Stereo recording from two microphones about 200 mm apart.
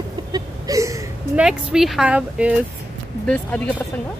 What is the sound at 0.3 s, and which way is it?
Hiccup, 15° right (ahead or behind).